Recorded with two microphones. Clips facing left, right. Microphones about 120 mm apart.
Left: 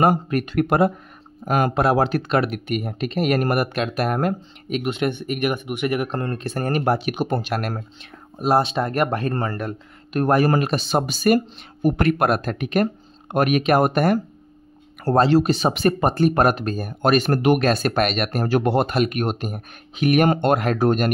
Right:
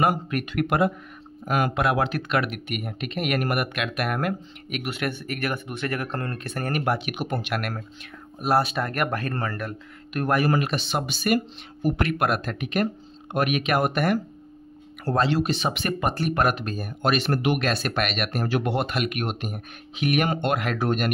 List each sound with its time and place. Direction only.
0.0 s speech: 35° left (ahead or behind)